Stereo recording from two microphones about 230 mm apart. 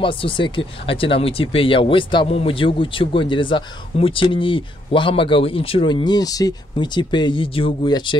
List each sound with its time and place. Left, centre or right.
0.0 s speech: left